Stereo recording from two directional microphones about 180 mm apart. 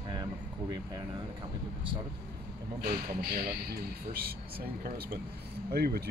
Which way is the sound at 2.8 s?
55° right (ahead or behind).